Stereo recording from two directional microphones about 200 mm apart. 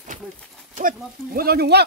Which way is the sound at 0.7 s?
40° right (ahead or behind).